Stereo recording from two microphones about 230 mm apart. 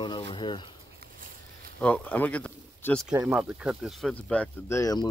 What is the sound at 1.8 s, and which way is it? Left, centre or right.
Speech, centre.